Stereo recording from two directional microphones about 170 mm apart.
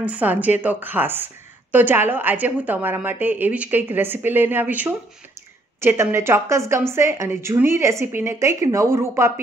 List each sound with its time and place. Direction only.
0.0 s a woman's voice: 10° right (ahead or behind)